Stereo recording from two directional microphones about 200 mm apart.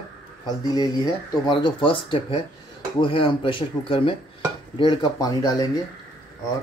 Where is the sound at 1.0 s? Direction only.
25° left (ahead or behind).